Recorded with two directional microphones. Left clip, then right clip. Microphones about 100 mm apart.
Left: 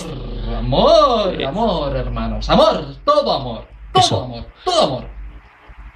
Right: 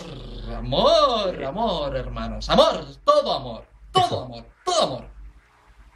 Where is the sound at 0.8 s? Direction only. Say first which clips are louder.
Left 6 dB; 10° right (ahead or behind).